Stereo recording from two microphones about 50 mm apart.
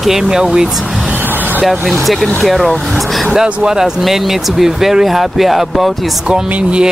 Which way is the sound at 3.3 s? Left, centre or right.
Centre.